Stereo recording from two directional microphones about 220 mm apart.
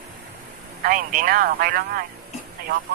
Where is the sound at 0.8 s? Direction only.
40° right (ahead or behind).